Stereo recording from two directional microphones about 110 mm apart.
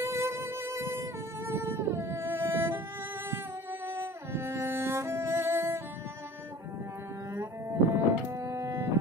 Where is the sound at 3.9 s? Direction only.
20° right (ahead or behind).